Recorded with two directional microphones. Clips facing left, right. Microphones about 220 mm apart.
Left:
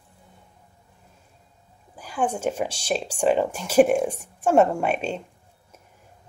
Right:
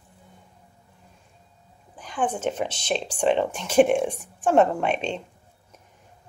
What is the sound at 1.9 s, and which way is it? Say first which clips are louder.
Speech: left 1 dB; 10° left (ahead or behind).